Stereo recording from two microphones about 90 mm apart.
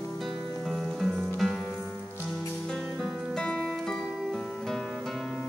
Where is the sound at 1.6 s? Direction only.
20° left (ahead or behind).